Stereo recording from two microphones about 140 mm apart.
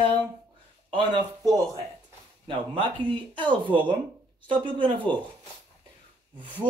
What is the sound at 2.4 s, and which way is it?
Speech, 40° right (ahead or behind).